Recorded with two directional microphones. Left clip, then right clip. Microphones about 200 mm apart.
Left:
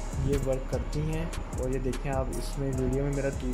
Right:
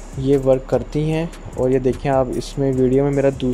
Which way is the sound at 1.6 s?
35° right (ahead or behind).